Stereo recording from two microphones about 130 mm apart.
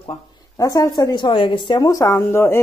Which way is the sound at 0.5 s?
25° left (ahead or behind).